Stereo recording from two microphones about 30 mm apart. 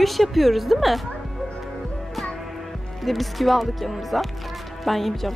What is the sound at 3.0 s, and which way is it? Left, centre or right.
Speech, centre.